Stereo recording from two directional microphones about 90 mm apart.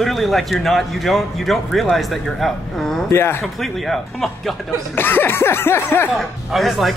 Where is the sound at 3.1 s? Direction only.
25° left (ahead or behind).